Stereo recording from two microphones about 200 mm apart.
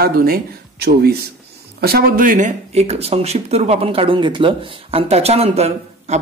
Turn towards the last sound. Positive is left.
turn(degrees=-30)  # may be behind; listen again after turning